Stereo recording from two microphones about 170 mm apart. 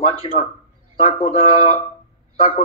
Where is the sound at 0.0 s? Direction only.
35° left (ahead or behind).